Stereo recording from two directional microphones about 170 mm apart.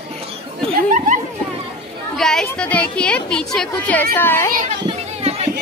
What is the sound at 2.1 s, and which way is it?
A child's voice, 5° left (ahead or behind).